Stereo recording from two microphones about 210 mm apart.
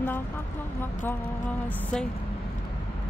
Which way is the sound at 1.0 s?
10° left (ahead or behind).